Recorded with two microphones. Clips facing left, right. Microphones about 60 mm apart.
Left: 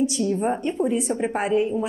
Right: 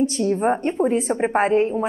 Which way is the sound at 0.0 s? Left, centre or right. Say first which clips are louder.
Right 3 dB; right.